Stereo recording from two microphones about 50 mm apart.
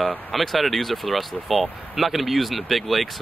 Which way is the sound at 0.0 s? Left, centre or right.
Centre.